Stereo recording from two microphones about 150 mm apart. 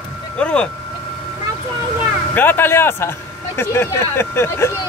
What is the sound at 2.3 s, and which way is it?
Speech, 15° left (ahead or behind).